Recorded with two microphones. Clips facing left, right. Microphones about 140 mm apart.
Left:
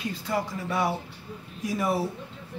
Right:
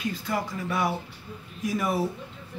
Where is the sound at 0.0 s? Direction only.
30° left (ahead or behind).